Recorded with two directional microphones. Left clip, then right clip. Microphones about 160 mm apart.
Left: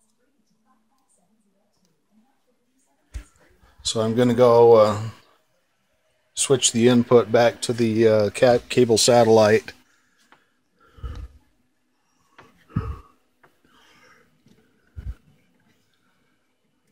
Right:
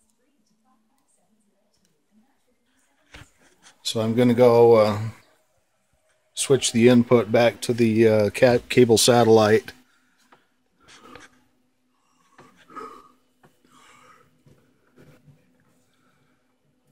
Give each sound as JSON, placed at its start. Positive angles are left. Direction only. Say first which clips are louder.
{"t": 3.8, "sound": "speech", "louder": "left 1 dB", "side_deg": -10}
{"t": 6.3, "sound": "speech", "louder": "left 1 dB", "side_deg": -15}
{"t": 9.2, "sound": "speech", "louder": "left 1 dB", "side_deg": -15}
{"t": 12.6, "sound": "gasp", "louder": "left 1 dB", "side_deg": 0}
{"t": 13.7, "sound": "a sound", "louder": "right 3 dB", "side_deg": -5}